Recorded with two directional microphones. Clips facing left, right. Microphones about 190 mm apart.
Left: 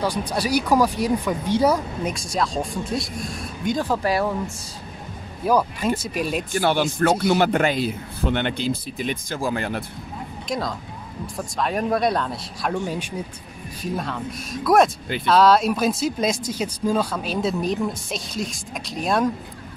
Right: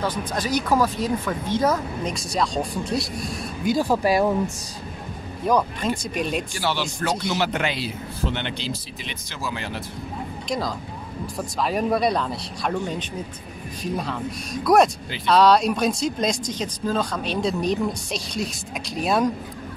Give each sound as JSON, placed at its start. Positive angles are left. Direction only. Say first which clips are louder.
{"t": 0.0, "sound": "speech", "louder": "left 2 dB", "side_deg": 10}
{"t": 2.1, "sound": "speech", "louder": "right 2 dB", "side_deg": 0}
{"t": 5.4, "sound": "speech", "louder": "left 1 dB", "side_deg": 5}
{"t": 6.5, "sound": "a man's voice", "louder": "left 6 dB", "side_deg": 50}
{"t": 11.3, "sound": "speech", "louder": "even", "side_deg": 0}